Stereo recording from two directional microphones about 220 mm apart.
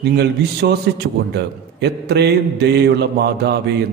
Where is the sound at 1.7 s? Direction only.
50° right (ahead or behind).